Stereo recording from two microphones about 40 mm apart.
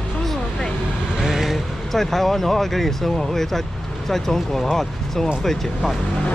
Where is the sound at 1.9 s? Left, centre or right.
Centre.